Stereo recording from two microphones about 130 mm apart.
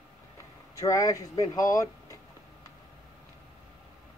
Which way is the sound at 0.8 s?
25° left (ahead or behind).